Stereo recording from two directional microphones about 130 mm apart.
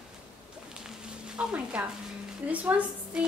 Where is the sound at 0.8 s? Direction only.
5° right (ahead or behind).